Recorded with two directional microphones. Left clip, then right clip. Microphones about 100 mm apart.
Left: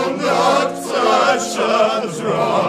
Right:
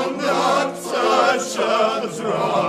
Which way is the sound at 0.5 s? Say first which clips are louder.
Left 3 dB; 20° right (ahead or behind).